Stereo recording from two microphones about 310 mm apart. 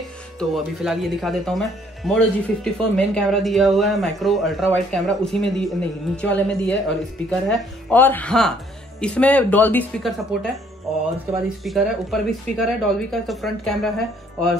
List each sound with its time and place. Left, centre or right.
0.4 s speech: centre
11.4 s speech: centre